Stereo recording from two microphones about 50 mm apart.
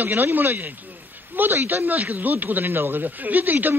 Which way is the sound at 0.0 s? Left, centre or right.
Right.